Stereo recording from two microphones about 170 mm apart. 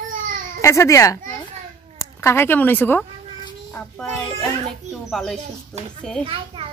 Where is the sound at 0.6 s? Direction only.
15° left (ahead or behind).